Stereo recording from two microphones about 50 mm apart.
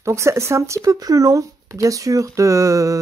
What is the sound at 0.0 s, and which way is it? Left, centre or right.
Speech, right.